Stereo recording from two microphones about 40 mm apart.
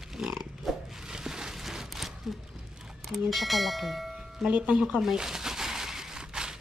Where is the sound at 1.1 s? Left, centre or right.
Centre.